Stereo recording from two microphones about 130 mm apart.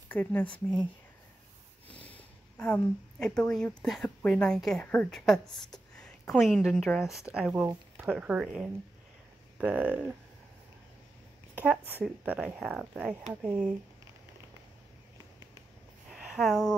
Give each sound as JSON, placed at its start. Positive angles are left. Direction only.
{"t": 0.1, "sound": "speech", "side_deg": 15}
{"t": 1.9, "sound": "speech", "side_deg": 10}
{"t": 11.5, "sound": "speech", "side_deg": -10}
{"t": 16.1, "sound": "a sound", "side_deg": -5}